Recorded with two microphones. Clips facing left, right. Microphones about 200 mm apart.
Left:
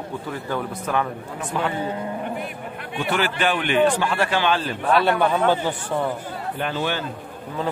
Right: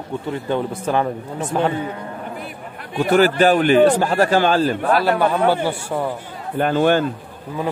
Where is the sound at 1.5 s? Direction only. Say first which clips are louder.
Right 6 dB; 40° right (ahead or behind).